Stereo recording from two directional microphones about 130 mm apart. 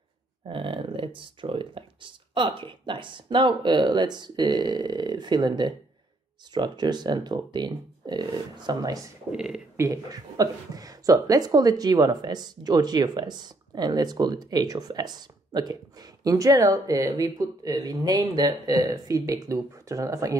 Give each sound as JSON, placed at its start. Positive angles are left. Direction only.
{"t": 0.5, "sound": "speech", "side_deg": -45}
{"t": 9.3, "sound": "speech", "side_deg": -5}
{"t": 9.8, "sound": "speech", "side_deg": -25}